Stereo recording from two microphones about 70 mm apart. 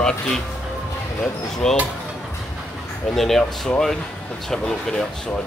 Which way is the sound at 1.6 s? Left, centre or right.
Centre.